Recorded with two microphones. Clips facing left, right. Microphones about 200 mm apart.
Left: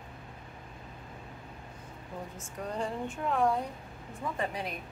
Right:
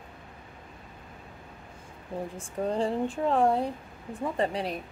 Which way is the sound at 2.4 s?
30° right (ahead or behind).